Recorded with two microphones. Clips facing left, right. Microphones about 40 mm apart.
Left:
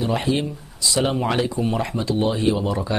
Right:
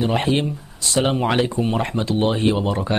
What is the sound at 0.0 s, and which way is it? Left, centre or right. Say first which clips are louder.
Speech: right 2 dB; right.